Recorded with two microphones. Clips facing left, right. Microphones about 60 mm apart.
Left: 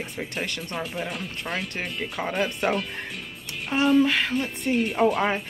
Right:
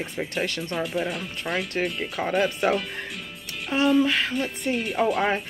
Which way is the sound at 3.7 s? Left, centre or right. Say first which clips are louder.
Even; left.